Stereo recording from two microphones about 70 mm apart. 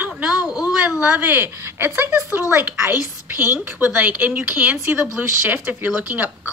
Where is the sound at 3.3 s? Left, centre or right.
Left.